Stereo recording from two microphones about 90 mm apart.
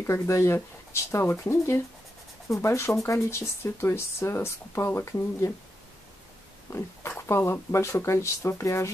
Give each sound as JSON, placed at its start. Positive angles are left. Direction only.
{"t": 0.0, "sound": "speech", "side_deg": 35}
{"t": 6.7, "sound": "speech", "side_deg": 30}